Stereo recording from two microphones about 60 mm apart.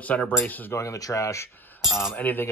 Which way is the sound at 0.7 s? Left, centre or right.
Left.